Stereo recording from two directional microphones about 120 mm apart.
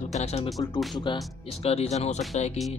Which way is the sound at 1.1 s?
40° left (ahead or behind).